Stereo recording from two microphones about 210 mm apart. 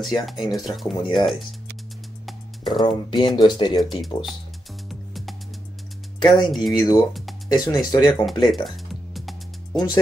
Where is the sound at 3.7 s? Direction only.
Centre (ahead or behind).